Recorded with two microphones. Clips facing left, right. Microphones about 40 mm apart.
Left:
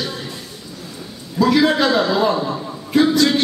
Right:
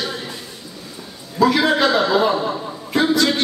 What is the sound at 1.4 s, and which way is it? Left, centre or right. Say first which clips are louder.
Speech: even; centre.